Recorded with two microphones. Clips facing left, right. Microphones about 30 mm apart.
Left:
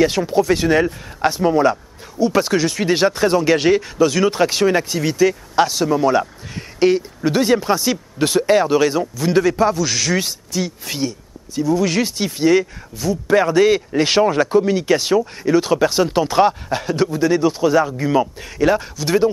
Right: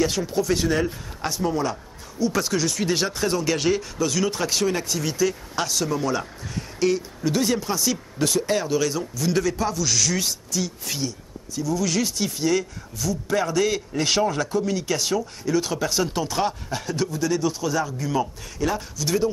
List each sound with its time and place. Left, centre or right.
0.0 s speech: left